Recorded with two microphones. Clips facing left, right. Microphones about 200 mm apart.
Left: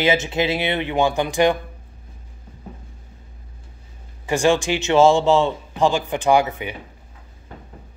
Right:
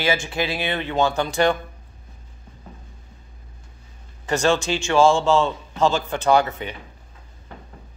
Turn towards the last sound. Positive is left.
turn(degrees=10)  # may be behind; listen again after turning